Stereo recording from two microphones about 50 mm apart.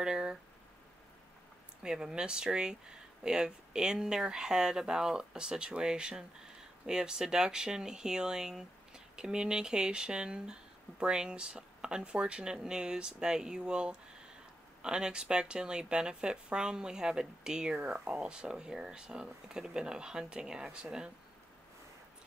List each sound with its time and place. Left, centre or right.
0.0 s speech: centre
1.8 s speech: centre